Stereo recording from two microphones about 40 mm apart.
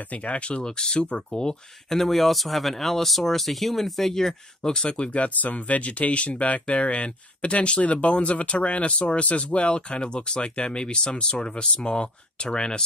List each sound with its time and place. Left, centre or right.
0.2 s speech: left
1.9 s speech: centre
4.8 s speech: left